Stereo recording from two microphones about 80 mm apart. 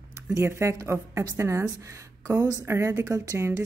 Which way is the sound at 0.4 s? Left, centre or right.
Right.